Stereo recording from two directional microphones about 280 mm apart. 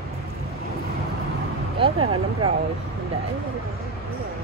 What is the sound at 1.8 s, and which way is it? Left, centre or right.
Speech, centre.